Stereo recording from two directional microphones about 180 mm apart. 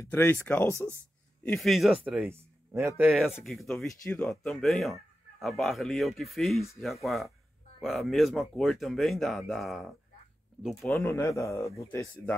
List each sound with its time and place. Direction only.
0.0 s a man's voice: 10° left (ahead or behind); by 3.1 s 15° right (ahead or behind)
3.1 s speech: centre (ahead or behind)
11.0 s a man's voice: 15° left (ahead or behind)